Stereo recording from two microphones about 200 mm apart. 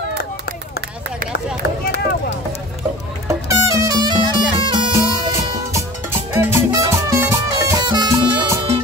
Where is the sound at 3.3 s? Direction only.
15° right (ahead or behind).